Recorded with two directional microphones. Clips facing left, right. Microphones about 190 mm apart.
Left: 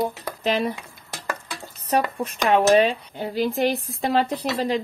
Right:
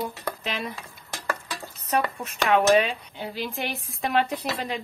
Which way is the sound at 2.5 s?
35° left (ahead or behind).